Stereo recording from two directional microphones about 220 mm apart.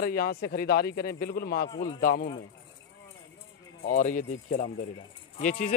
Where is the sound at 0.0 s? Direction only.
45° left (ahead or behind).